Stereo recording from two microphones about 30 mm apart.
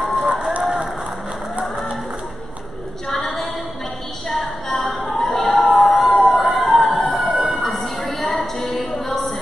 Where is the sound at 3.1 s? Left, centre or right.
Centre.